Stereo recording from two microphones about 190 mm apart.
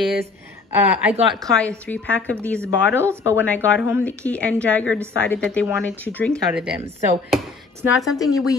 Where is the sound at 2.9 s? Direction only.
15° right (ahead or behind).